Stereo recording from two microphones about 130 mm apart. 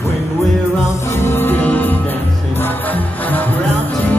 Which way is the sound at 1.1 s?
20° left (ahead or behind).